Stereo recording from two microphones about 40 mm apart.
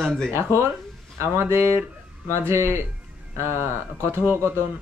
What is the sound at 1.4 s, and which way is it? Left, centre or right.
Speech, right.